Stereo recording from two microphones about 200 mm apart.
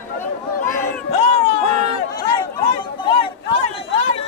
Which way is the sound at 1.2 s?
30° left (ahead or behind).